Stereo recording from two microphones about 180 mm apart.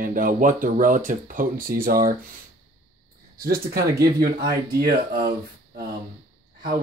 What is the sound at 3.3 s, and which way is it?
Speech, 55° right (ahead or behind).